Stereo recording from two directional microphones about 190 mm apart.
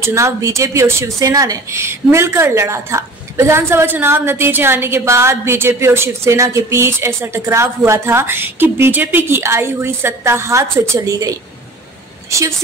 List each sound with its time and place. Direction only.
0.0 s a woman's voice: 15° right (ahead or behind)